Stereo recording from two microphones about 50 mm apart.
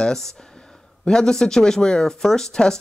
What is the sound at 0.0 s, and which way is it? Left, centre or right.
Speech, centre.